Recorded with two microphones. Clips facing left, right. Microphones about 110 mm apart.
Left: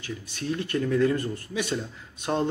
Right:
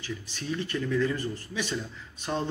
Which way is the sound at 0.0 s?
55° left (ahead or behind).